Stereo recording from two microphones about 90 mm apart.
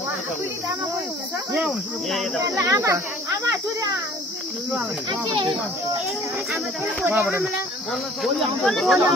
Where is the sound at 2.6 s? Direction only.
35° right (ahead or behind).